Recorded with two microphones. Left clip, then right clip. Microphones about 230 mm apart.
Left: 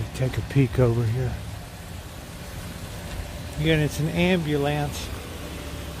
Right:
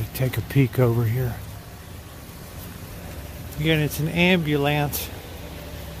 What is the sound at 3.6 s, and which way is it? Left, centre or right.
Speech, centre.